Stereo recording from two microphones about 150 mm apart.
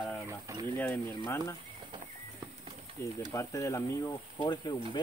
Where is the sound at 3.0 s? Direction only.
20° left (ahead or behind).